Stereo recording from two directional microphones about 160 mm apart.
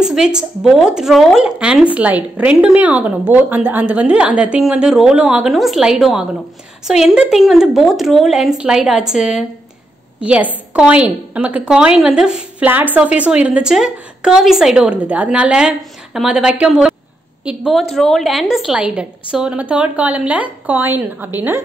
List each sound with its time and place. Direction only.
0.0 s a woman's voice: 5° right (ahead or behind)